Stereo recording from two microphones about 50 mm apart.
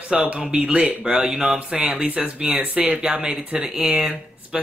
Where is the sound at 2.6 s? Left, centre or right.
Right.